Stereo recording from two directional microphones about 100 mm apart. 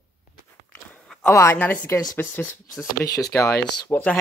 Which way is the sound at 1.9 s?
40° left (ahead or behind).